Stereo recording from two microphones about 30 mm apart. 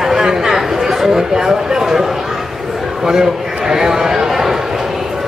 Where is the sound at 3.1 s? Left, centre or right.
Centre.